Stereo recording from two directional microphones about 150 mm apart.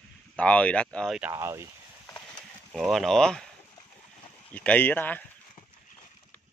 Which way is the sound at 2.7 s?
Centre (ahead or behind).